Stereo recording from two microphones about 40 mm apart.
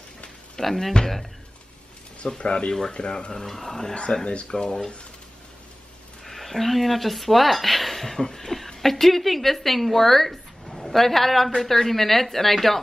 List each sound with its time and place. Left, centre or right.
0.6 s speech: centre
2.3 s speech: left; by 3.9 s centre
3.9 s speech: left
6.2 s speech: centre